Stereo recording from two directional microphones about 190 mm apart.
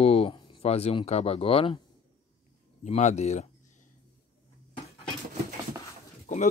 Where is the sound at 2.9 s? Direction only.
35° left (ahead or behind).